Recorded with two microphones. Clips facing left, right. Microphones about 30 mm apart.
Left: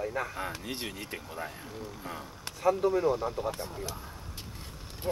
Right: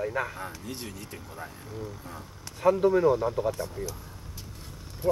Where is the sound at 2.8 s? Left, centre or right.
Centre.